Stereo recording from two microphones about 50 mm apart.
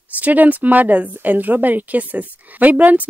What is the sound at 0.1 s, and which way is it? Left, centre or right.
A woman's voice, right.